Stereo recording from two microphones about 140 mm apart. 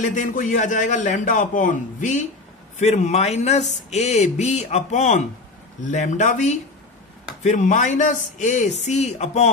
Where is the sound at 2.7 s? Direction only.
55° left (ahead or behind).